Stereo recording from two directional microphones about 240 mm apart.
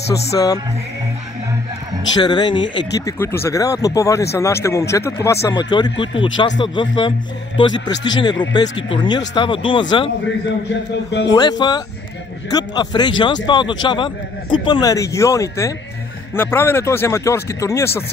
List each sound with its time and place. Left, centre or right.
0.3 s a man's voice: centre
2.2 s a man's voice: centre
11.3 s a man's voice: centre